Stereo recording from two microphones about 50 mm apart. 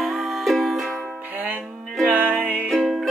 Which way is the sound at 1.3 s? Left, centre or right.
Right.